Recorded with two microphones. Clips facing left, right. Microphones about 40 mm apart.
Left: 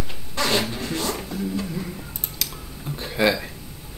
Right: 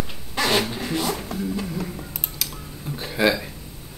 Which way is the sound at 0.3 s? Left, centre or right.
Centre.